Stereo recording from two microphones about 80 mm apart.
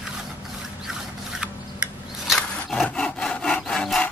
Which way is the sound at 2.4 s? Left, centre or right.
Centre.